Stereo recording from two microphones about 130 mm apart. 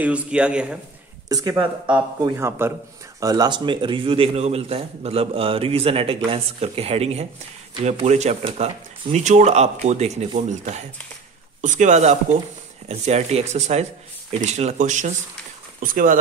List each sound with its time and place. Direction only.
0.0 s a man's voice: 10° right (ahead or behind)
1.3 s a man's voice: 30° right (ahead or behind)
3.2 s speech: 30° right (ahead or behind); by 15.1 s 70° right (ahead or behind)
15.8 s speech: 90° right